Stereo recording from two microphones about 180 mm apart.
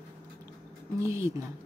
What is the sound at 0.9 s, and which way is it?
Speech, 15° right (ahead or behind).